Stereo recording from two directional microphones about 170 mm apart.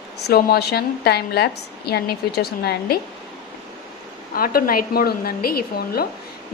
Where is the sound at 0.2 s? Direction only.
70° left (ahead or behind).